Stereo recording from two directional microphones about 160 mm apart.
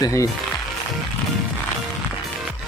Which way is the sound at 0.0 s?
20° left (ahead or behind).